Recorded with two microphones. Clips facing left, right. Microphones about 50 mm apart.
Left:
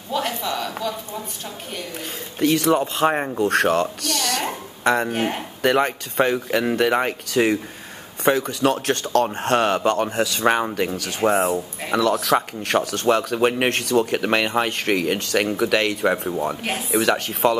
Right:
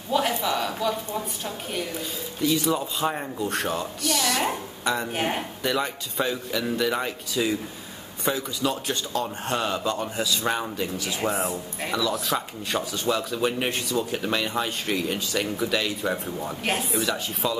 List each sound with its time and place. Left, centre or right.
0.1 s a sound: centre
2.4 s speech: left
5.1 s speech: centre
5.6 s a man's voice: left
7.2 s speech: left
10.4 s a man's voice: left
11.9 s speech: left